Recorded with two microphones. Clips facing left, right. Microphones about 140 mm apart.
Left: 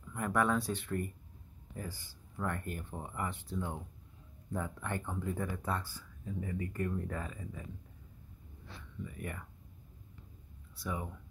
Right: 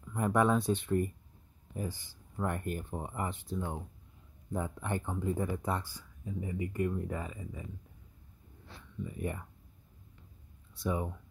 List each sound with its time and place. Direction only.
0.1 s speech: 20° right (ahead or behind)
9.0 s speech: 25° right (ahead or behind)
10.8 s speech: 25° right (ahead or behind)